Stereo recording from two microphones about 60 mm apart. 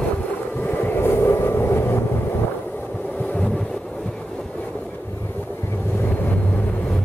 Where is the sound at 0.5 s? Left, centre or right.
Left.